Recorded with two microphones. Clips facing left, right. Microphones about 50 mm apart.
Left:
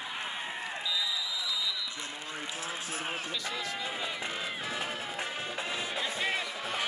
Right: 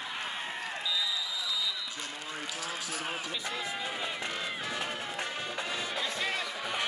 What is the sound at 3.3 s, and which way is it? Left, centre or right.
Speech, centre.